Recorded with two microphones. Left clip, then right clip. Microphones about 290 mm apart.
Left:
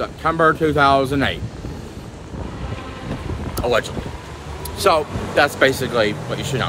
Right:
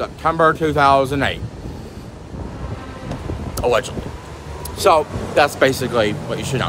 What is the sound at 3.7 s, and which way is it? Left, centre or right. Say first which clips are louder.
Speech: right 2 dB; centre.